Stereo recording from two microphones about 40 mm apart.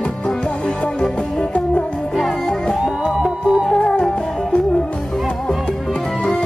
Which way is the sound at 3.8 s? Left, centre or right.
Centre.